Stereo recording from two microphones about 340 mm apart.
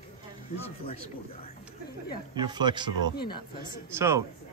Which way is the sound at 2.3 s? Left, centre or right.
Centre.